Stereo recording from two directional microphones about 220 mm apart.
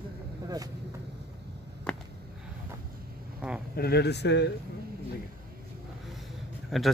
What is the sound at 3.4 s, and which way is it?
Speech, 5° right (ahead or behind).